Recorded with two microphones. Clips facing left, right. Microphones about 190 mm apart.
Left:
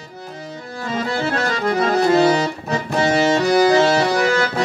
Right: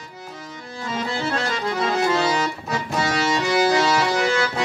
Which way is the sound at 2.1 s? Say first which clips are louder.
Left 7 dB; 55° left (ahead or behind).